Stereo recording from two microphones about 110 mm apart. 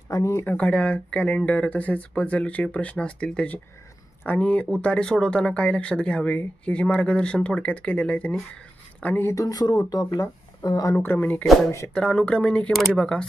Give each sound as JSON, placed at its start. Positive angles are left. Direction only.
{"t": 0.1, "sound": "speech", "side_deg": 25}
{"t": 9.0, "sound": "speech", "side_deg": 20}
{"t": 11.0, "sound": "speech", "side_deg": 15}